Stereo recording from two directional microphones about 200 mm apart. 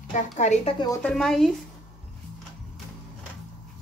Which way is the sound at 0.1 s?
35° left (ahead or behind).